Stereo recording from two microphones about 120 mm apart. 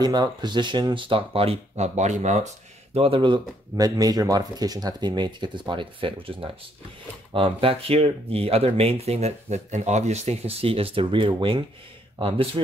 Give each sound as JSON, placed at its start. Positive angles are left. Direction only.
{"t": 0.0, "sound": "speech", "side_deg": -35}
{"t": 2.9, "sound": "speech", "side_deg": -50}